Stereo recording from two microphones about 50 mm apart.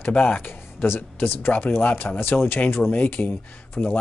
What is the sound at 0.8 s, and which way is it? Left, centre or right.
A man's voice, left.